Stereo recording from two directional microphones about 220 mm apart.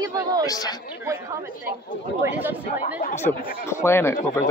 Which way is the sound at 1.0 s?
10° right (ahead or behind).